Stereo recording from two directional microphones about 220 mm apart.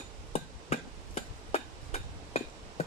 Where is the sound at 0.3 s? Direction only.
25° left (ahead or behind).